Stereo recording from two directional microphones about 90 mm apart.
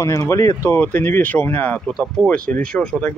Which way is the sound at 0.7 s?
25° left (ahead or behind).